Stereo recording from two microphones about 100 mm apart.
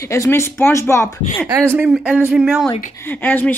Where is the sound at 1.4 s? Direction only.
30° right (ahead or behind).